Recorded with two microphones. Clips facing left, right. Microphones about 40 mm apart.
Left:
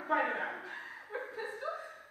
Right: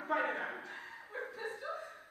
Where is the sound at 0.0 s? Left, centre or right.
Centre.